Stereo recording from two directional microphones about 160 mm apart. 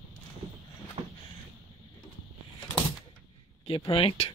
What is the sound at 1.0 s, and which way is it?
Vehicle, 35° right (ahead or behind).